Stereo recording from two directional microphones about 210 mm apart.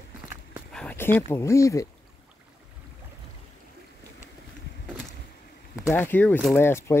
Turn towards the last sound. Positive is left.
turn(degrees=10)  # may be behind; listen again after turning